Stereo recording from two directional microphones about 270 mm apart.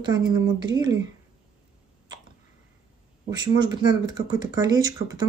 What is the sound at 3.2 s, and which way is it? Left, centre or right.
Speech, centre.